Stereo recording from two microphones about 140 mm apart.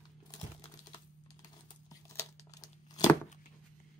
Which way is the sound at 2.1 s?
25° left (ahead or behind).